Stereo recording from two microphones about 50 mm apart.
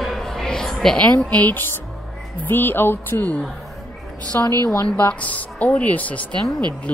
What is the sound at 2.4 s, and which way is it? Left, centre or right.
Speech, left.